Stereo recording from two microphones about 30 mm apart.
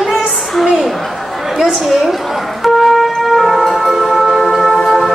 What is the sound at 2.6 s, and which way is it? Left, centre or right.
Wind instrument, centre.